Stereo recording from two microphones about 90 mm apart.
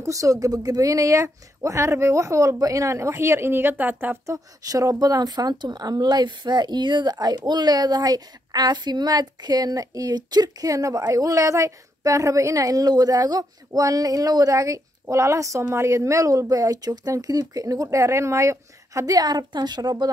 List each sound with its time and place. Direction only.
0.0 s speech: 35° right (ahead or behind); by 4.2 s 20° right (ahead or behind)
4.3 s speech: 40° right (ahead or behind)